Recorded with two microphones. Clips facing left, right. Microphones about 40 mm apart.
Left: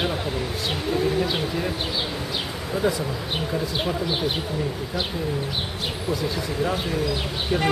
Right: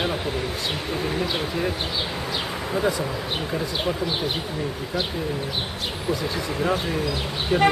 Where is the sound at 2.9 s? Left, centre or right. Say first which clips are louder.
Right 1 dB; centre.